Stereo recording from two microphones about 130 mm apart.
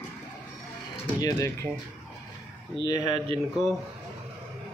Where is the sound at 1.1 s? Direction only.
25° left (ahead or behind).